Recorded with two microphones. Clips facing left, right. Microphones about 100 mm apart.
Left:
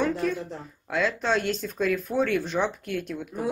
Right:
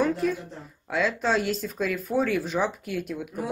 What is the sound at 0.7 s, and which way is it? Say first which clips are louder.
Speech: right 1 dB; centre (ahead or behind).